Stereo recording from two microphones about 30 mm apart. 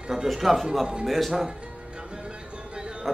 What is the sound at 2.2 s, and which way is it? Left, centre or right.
Music, right.